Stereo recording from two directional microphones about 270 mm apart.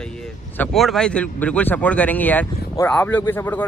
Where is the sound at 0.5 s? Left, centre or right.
Centre.